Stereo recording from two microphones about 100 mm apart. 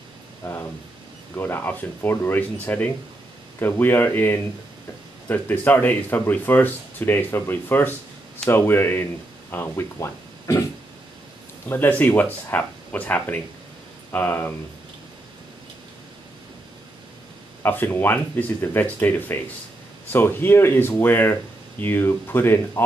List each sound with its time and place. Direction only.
0.4 s a sound: 25° left (ahead or behind)
1.3 s speech: 20° left (ahead or behind)
11.7 s speech: 20° left (ahead or behind)
17.6 s speech: 20° left (ahead or behind)